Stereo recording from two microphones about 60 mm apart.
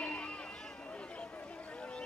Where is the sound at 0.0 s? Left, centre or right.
Left.